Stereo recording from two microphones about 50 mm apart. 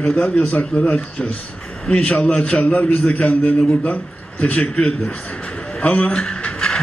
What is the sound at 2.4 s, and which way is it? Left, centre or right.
A man's voice, left.